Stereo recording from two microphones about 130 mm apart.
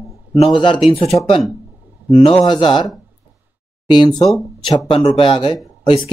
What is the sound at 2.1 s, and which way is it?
Speech, 40° left (ahead or behind).